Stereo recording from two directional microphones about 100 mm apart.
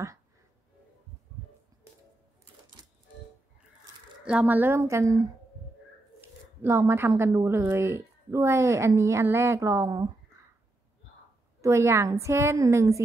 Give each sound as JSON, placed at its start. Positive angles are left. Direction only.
{"t": 4.2, "sound": "a woman's voice", "side_deg": -10}
{"t": 11.6, "sound": "speech", "side_deg": -30}